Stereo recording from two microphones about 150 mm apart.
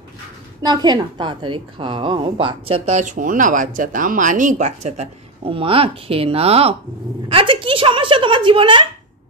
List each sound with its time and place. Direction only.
0.6 s a woman's voice: 30° right (ahead or behind)